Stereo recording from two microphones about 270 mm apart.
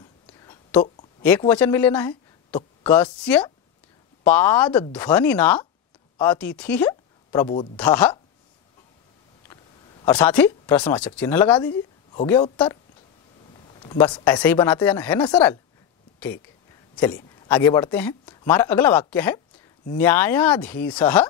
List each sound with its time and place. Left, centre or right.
0.3 s whispering: centre
1.5 s a woman's voice: centre
7.2 s speech: centre
7.7 s speech: centre
10.0 s speech: centre
11.7 s a woman's voice: centre
13.8 s speech: centre
17.0 s speech: centre